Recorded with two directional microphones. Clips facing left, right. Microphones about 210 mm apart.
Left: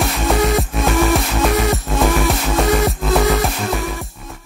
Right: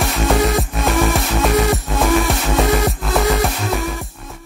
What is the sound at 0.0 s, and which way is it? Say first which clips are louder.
Music: even; centre (ahead or behind).